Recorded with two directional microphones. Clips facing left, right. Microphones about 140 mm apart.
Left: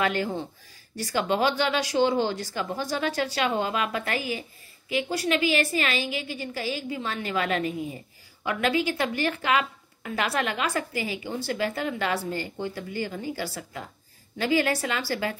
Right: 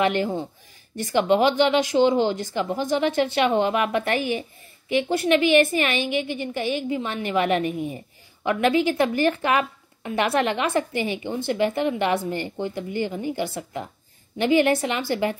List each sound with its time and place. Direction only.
0.0 s speech: 20° right (ahead or behind)